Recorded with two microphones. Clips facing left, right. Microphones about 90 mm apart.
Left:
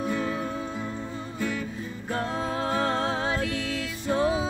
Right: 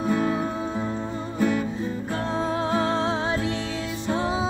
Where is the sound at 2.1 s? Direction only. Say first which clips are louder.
Right 2 dB; 25° right (ahead or behind).